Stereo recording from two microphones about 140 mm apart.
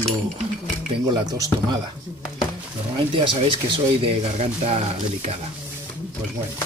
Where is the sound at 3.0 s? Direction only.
35° right (ahead or behind).